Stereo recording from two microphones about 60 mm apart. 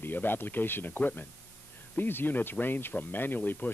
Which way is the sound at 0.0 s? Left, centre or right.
Left.